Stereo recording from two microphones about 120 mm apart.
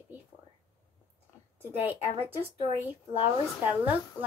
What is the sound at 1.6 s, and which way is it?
A woman's voice, 15° right (ahead or behind).